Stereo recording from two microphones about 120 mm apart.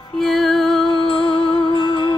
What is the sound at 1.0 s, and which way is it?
Music, 45° left (ahead or behind).